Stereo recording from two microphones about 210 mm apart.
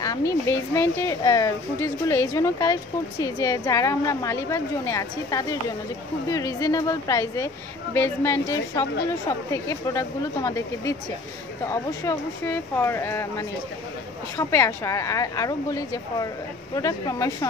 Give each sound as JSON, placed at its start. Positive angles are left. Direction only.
{"t": 0.0, "sound": "speech", "side_deg": 15}